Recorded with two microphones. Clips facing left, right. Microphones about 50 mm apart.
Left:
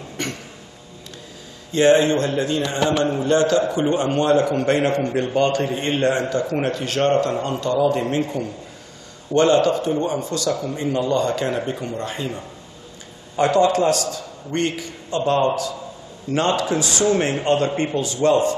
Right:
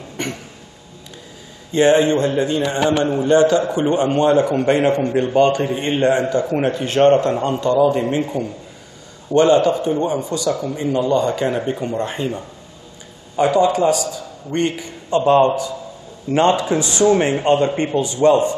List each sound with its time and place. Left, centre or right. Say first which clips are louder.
0.2 s a sound: right 2 dB; centre
1.7 s a man's voice: right 1 dB; right
7.8 s a man's voice: right 3 dB; centre
13.4 s a man's voice: right 2 dB; centre